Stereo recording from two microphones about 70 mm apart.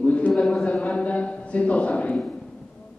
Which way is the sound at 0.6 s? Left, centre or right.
Centre.